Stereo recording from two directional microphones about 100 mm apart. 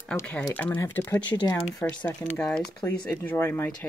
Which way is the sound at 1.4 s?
35° left (ahead or behind).